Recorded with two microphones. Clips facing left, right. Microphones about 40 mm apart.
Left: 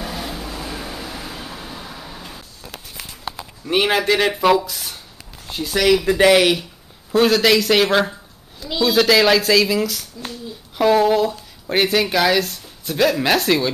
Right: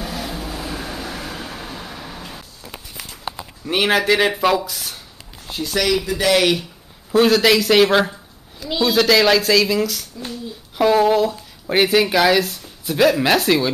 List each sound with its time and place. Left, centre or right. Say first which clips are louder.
0.0 s vehicle: right 1 dB; centre
1.0 s vehicle: right 2 dB; right
1.7 s vehicle: right 1 dB; centre
3.6 s speech: even; centre